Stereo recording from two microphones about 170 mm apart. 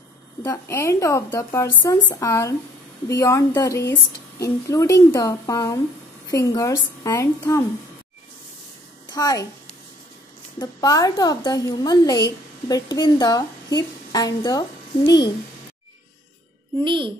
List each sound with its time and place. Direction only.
0.4 s a woman's voice: 15° left (ahead or behind)
9.1 s a woman's voice: 20° left (ahead or behind)
10.6 s a woman's voice: 20° left (ahead or behind)
16.8 s a child's voice: 30° right (ahead or behind)